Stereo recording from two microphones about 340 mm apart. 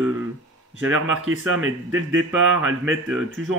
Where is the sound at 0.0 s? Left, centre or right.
Centre.